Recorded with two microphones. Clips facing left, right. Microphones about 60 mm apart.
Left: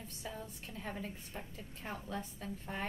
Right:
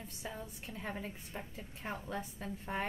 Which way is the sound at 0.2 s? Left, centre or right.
Centre.